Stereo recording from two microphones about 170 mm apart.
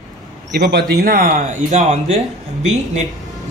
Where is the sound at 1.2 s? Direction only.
50° right (ahead or behind).